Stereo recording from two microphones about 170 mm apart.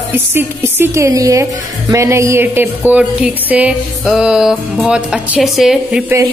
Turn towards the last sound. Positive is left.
turn(degrees=0)  # may be behind; listen again after turning